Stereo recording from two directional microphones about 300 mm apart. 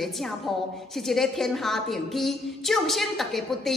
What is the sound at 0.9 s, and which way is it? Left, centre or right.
A woman's voice, centre.